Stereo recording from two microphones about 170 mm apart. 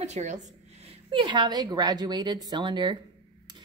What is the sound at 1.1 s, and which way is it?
A woman's voice, 30° right (ahead or behind).